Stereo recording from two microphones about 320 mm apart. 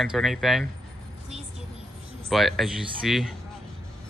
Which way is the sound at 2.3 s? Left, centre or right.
Centre.